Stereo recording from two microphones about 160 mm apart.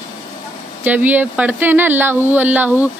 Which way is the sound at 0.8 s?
10° right (ahead or behind).